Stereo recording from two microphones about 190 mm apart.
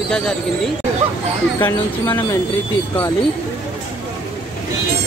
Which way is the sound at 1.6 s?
15° left (ahead or behind).